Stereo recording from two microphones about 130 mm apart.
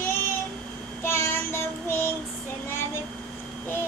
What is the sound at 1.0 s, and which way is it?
Child singing, 20° left (ahead or behind).